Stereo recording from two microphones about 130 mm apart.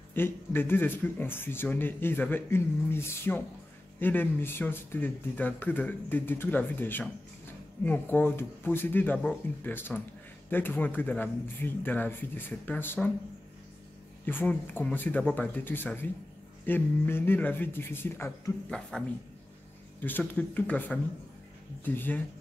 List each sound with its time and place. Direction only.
0.1 s speech: 15° left (ahead or behind)
14.2 s speech: 15° left (ahead or behind)
18.7 s speech: 5° left (ahead or behind)
20.0 s speech: 15° left (ahead or behind)